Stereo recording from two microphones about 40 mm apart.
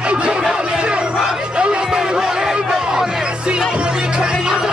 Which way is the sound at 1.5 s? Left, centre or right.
Right.